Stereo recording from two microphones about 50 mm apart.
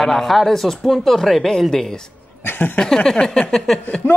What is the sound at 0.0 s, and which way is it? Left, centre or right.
Speech, centre.